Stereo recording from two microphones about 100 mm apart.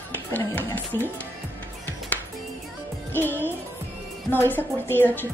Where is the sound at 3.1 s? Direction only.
20° left (ahead or behind).